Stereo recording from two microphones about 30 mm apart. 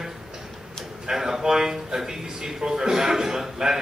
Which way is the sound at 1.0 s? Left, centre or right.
Centre.